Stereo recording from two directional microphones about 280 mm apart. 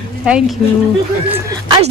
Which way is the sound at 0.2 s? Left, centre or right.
Centre.